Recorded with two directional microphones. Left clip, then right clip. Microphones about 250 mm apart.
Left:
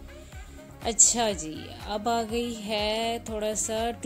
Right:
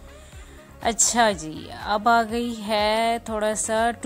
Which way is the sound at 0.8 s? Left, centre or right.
Right.